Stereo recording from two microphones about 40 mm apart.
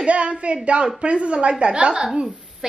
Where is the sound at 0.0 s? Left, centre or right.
Right.